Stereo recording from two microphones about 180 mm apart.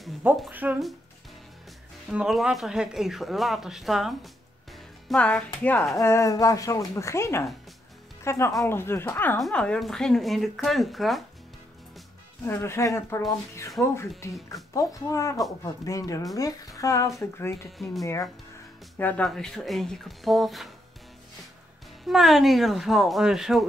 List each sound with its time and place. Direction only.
0.4 s speech: 10° right (ahead or behind)
2.0 s speech: centre (ahead or behind)
5.9 s speech: 15° left (ahead or behind); by 11.2 s centre (ahead or behind)
12.4 s speech: 15° left (ahead or behind)
22.0 s speech: centre (ahead or behind)